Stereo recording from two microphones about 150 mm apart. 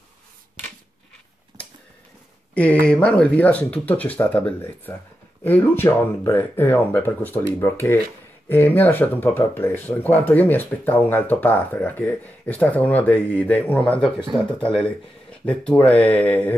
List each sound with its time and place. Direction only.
2.5 s speech: 10° left (ahead or behind)